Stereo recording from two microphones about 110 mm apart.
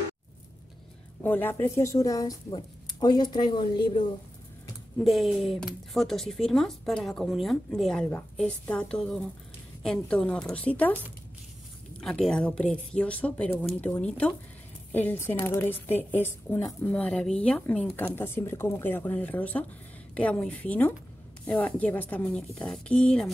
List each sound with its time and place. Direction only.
1.2 s speech: 15° left (ahead or behind); by 4.1 s 45° left (ahead or behind)
5.0 s speech: centre (ahead or behind)
12.0 s a woman's voice: 5° left (ahead or behind)